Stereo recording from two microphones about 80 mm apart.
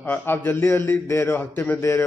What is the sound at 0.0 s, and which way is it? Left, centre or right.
A man's voice, left.